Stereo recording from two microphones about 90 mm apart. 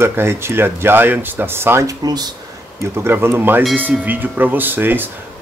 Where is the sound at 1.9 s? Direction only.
45° right (ahead or behind).